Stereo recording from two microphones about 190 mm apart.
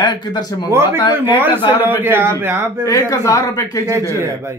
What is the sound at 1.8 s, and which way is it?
Speech, 10° right (ahead or behind).